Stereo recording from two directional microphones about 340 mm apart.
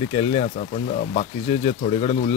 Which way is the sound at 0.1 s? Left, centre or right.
Centre.